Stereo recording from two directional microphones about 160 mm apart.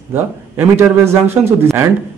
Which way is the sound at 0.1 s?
15° right (ahead or behind).